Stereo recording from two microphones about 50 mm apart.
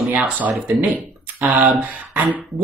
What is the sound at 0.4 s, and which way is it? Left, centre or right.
Speech, right.